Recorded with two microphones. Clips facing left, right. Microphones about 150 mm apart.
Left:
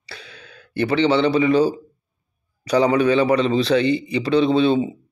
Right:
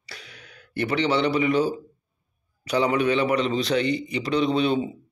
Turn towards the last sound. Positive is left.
turn(degrees=30)  # may be behind; listen again after turning